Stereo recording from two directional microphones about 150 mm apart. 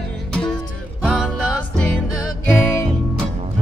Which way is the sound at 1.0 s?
5° right (ahead or behind).